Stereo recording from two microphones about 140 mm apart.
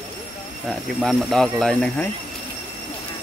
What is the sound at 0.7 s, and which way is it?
Speech, 5° left (ahead or behind).